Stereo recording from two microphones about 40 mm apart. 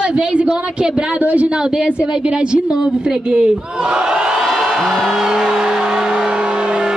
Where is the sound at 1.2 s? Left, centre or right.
Right.